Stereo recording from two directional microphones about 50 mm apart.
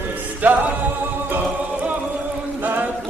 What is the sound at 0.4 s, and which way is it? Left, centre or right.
Music, right.